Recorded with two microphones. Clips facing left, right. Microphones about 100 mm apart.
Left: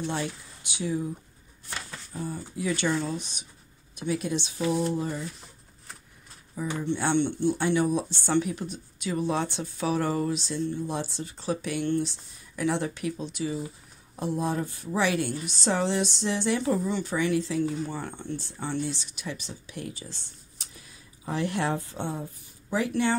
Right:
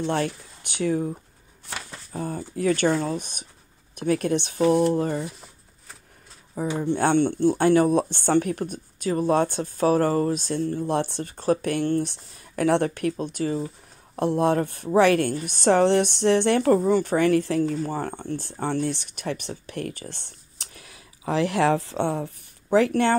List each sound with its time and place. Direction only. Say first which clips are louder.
0.0 s a woman's voice: right 6 dB; 55° right (ahead or behind)
6.8 s speech: right 5 dB; 45° right (ahead or behind)
12.1 s a woman's voice: right 2 dB; 60° right (ahead or behind)
14.1 s a woman's voice: right 7 dB; 65° right (ahead or behind)